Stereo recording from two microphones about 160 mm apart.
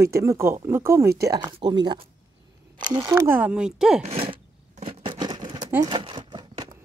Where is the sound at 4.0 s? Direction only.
35° right (ahead or behind).